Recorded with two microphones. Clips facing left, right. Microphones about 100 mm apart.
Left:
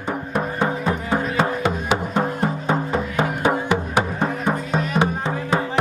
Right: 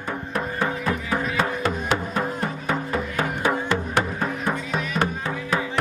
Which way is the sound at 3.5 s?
10° left (ahead or behind).